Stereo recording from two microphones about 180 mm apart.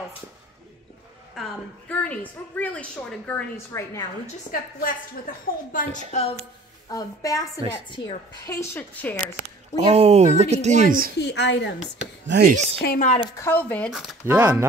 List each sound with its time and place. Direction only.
1.3 s a woman's voice: 5° left (ahead or behind)
4.5 s a woman's voice: 50° left (ahead or behind)
6.1 s a woman's voice: 40° left (ahead or behind)
6.9 s a woman's voice: 20° left (ahead or behind)
9.8 s speech: 35° right (ahead or behind)
11.1 s a woman's voice: 75° left (ahead or behind)
12.3 s speech: 75° right (ahead or behind)
12.8 s speech: 55° left (ahead or behind)
13.4 s a woman's voice: 10° left (ahead or behind)
14.2 s speech: 15° right (ahead or behind)